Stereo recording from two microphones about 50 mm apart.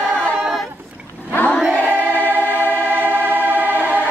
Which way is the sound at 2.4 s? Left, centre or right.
Left.